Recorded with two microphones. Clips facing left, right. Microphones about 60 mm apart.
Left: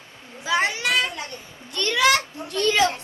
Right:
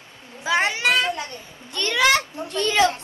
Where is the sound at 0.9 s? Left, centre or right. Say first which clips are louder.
Right 2 dB; right.